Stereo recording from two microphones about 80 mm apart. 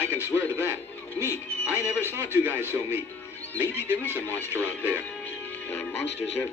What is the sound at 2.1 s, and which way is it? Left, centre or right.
Speech, right.